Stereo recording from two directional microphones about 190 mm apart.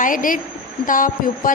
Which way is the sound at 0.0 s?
45° left (ahead or behind).